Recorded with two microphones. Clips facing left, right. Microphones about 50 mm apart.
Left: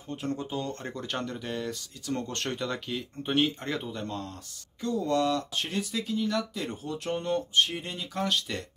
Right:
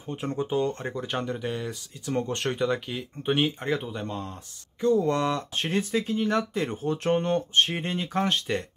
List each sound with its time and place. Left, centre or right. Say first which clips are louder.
0.1 s speech: right 5 dB; right
5.0 s speech: right 1 dB; right